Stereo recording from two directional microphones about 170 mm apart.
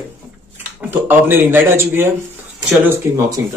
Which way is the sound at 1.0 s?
10° right (ahead or behind).